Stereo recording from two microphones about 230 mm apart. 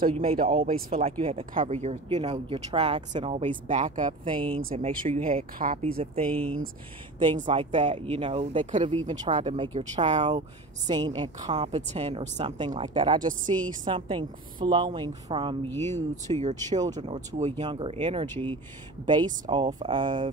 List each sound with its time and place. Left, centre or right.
0.0 s speech: right
0.5 s speech: right
4.0 s speech: right
6.2 s speech: centre
7.4 s speech: right
10.9 s a woman's voice: centre
15.7 s speech: centre
16.3 s speech: right
16.6 s speech: centre
18.3 s speech: centre
19.0 s speech: centre